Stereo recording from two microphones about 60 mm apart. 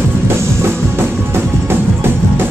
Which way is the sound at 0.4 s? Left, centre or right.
Right.